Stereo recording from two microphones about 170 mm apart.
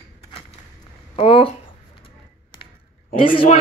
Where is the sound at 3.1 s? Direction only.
30° left (ahead or behind).